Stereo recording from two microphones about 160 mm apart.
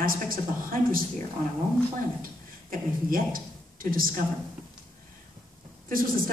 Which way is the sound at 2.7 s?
60° right (ahead or behind).